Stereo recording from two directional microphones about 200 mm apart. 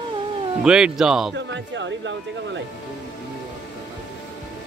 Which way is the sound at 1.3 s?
65° right (ahead or behind).